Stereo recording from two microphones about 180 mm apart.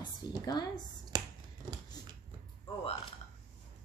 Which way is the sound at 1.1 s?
20° right (ahead or behind).